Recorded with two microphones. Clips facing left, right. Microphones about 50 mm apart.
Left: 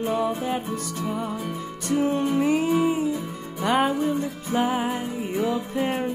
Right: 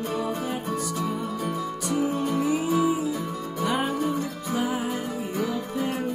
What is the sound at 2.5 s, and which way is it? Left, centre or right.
Music, left.